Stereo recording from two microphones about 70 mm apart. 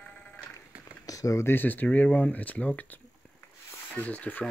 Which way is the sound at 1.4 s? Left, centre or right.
Left.